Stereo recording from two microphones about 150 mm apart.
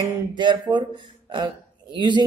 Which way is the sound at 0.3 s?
30° right (ahead or behind).